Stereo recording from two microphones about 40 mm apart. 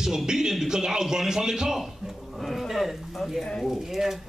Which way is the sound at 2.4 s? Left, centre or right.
Centre.